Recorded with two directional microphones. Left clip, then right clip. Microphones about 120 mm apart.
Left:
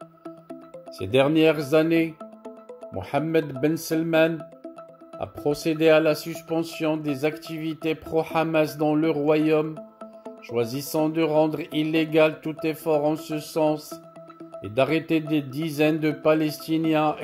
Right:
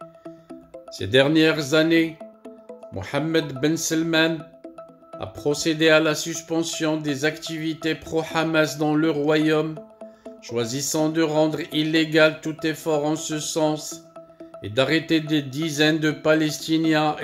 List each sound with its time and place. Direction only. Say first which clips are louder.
0.9 s speech: right 2 dB; 25° left (ahead or behind)